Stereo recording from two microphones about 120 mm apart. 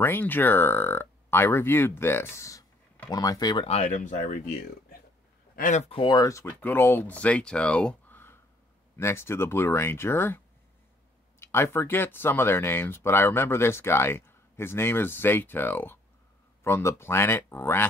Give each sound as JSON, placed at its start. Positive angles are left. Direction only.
{"t": 0.0, "sound": "speech", "side_deg": 15}
{"t": 3.6, "sound": "speech", "side_deg": 70}
{"t": 5.6, "sound": "speech", "side_deg": 90}
{"t": 5.9, "sound": "speech", "side_deg": 50}
{"t": 6.1, "sound": "speech", "side_deg": 30}
{"t": 6.6, "sound": "speech", "side_deg": 15}